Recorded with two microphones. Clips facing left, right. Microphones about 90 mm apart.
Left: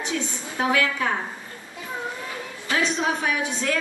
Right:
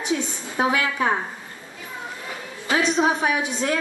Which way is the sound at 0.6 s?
25° right (ahead or behind).